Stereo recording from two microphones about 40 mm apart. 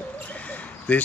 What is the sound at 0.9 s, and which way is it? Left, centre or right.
Speech, left.